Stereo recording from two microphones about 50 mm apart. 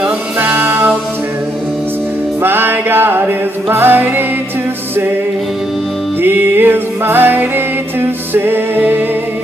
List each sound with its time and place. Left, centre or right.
0.4 s music: right
2.4 s music: right
6.2 s music: right